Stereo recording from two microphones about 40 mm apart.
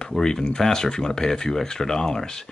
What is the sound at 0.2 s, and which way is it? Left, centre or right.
Speech, centre.